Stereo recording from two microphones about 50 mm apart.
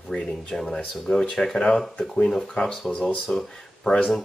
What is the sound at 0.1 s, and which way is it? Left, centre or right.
Speech, centre.